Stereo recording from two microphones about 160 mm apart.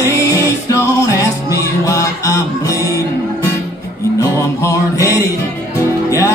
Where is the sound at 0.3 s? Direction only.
20° left (ahead or behind).